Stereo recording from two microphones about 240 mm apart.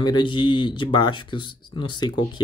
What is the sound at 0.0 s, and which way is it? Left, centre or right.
Speech, centre.